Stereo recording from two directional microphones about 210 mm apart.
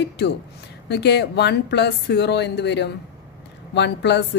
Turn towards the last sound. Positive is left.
turn(degrees=55)  # may be behind; listen again after turning